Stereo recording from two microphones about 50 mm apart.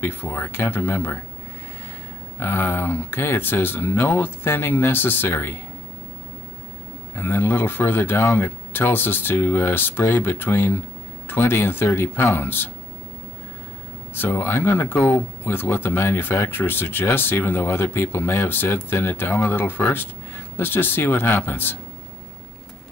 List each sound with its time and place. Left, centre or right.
0.0 s speech: left
2.4 s speech: left
7.2 s speech: left
14.1 s speech: left